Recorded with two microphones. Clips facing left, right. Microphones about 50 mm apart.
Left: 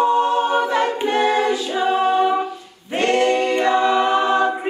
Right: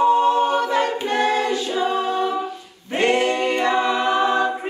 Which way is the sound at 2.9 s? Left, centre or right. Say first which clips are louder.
Left 2 dB; centre.